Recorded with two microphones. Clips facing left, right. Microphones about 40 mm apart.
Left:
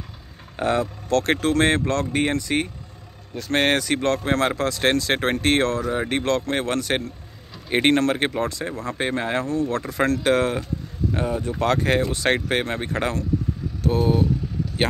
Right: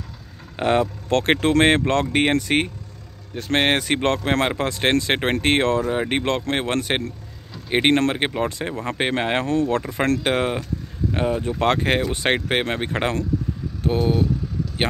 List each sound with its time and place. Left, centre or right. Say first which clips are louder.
0.6 s speech: right 3 dB; right
3.3 s speech: right 1 dB; right
8.5 s speech: right 2 dB; right
9.4 s speech: right 3 dB; right
10.2 s speech: left 1 dB; right